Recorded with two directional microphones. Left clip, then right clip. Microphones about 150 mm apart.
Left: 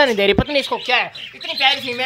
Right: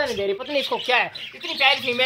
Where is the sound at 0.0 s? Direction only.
60° left (ahead or behind).